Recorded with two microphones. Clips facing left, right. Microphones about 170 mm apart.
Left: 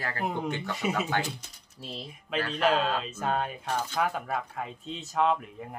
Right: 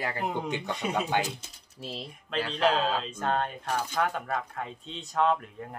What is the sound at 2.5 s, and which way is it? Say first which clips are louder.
Speech: even; 5° left (ahead or behind).